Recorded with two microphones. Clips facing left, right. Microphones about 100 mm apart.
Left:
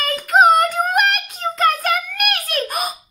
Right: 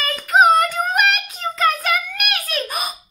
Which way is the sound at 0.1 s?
40° left (ahead or behind).